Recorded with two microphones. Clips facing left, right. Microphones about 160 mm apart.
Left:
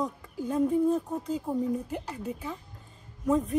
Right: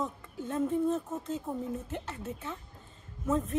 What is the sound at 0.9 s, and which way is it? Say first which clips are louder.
Speech: left 4 dB; 15° left (ahead or behind).